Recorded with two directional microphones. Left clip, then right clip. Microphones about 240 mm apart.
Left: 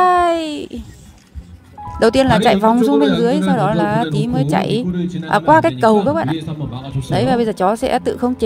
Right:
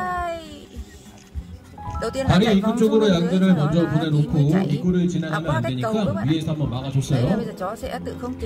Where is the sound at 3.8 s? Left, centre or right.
Left.